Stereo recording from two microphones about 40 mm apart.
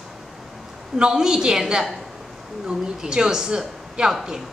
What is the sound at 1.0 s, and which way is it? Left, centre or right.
A woman's voice, centre.